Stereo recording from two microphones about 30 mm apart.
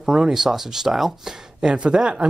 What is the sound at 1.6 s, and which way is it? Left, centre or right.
Speech, right.